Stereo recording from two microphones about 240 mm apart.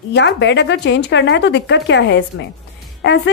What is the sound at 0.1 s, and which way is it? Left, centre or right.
A woman's voice, left.